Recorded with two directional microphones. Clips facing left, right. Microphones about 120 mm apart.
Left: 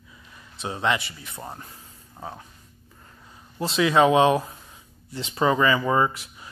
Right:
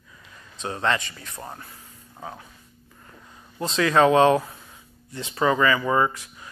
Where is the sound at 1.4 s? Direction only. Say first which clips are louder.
Left 1 dB; 15° left (ahead or behind).